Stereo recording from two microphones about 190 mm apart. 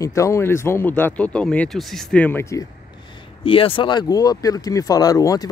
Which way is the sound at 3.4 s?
30° left (ahead or behind).